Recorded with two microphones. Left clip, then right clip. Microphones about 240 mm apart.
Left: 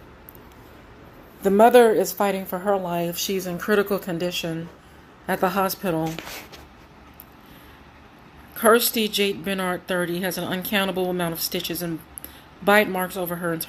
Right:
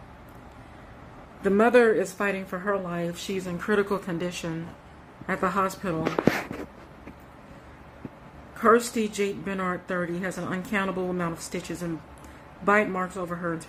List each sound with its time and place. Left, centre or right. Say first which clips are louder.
1.4 s a woman's voice: left 5 dB; centre
8.5 s a woman's voice: left 3 dB; centre